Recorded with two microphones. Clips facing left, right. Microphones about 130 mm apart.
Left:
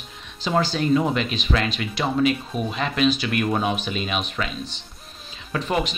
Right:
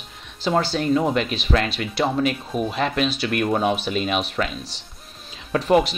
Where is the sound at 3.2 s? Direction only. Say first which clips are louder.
Right 1 dB; 50° right (ahead or behind).